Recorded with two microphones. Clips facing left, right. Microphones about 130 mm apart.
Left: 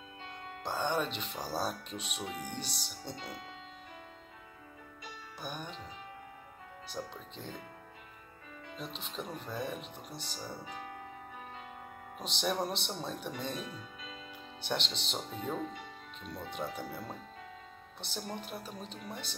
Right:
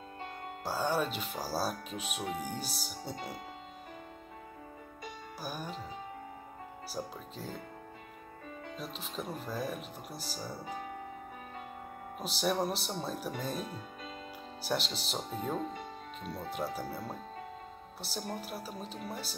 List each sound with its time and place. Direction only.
0.7 s speech: 5° right (ahead or behind)
5.4 s speech: 5° right (ahead or behind)
6.9 s speech: 5° right (ahead or behind)
8.7 s speech: centre (ahead or behind)
12.2 s speech: 5° right (ahead or behind)
13.6 s speech: 40° right (ahead or behind)
14.6 s speech: 5° right (ahead or behind)
15.7 s music: 50° right (ahead or behind)
16.6 s speech: 5° right (ahead or behind)
18.3 s speech: 5° right (ahead or behind)